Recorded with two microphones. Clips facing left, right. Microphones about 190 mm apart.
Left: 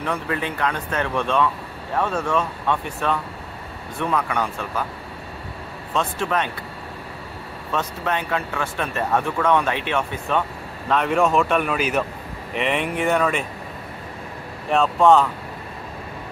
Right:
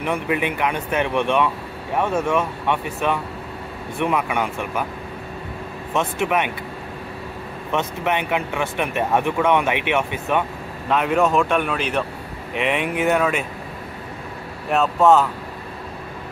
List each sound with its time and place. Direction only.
0.0 s speech: 15° right (ahead or behind)
5.9 s speech: 15° right (ahead or behind)
7.7 s speech: 20° right (ahead or behind)
10.9 s speech: 5° right (ahead or behind)
14.7 s speech: centre (ahead or behind)